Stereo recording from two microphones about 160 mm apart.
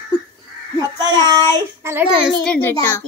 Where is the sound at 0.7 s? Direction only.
25° right (ahead or behind).